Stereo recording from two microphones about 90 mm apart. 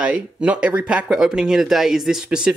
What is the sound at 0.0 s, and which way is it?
Speech, 15° right (ahead or behind).